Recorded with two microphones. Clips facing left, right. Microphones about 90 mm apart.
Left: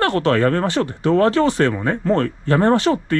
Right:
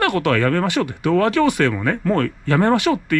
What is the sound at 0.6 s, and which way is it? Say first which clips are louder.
Speech: left 1 dB; 15° right (ahead or behind).